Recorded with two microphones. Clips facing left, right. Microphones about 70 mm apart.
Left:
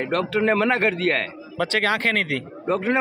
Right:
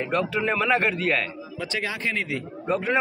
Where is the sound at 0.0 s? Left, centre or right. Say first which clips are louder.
Left 3 dB; left.